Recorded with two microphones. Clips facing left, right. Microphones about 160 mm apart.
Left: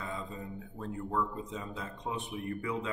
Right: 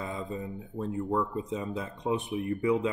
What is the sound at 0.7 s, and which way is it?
Speech, 15° right (ahead or behind).